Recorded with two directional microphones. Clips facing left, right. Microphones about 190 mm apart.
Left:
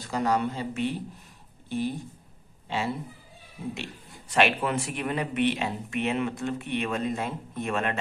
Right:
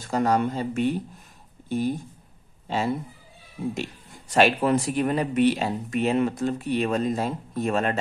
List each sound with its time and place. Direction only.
0.0 s speech: 45° right (ahead or behind)
4.3 s speech: 35° right (ahead or behind)